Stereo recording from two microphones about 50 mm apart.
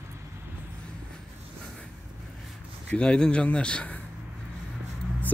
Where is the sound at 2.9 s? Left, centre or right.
Left.